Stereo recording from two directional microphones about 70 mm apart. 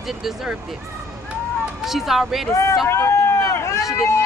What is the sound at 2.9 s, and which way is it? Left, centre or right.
Run, left.